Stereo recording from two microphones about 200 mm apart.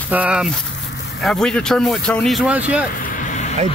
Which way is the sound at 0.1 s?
5° right (ahead or behind).